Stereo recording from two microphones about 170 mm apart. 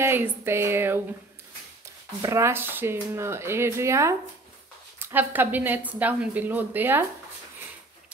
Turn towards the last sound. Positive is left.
turn(degrees=-10)  # may be behind; listen again after turning